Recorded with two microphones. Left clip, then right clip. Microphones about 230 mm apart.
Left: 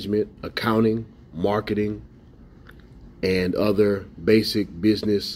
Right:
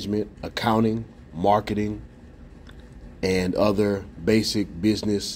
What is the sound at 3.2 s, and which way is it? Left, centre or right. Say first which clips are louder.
Speech: even; right.